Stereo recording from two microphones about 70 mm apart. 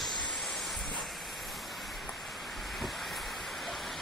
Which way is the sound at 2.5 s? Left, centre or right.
Centre.